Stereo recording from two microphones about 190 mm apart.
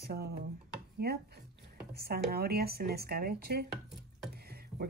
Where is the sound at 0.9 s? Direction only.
55° right (ahead or behind).